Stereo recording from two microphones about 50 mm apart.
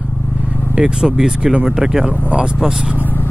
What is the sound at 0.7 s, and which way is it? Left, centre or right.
Speech, centre.